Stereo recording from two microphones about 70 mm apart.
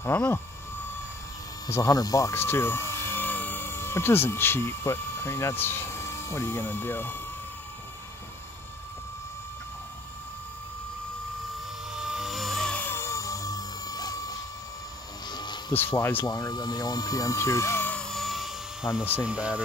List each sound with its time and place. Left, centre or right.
0.1 s speech: left
1.8 s speech: left
2.3 s speech: left
11.9 s wood: centre
12.9 s a sound: left
15.2 s vehicle: left
15.7 s speech: left
16.3 s speech: left
18.0 s a sound: centre
19.2 s speech: centre